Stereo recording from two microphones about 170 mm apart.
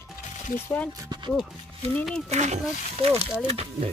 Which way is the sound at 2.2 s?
40° right (ahead or behind).